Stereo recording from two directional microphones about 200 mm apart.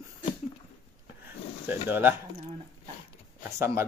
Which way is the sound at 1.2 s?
10° right (ahead or behind).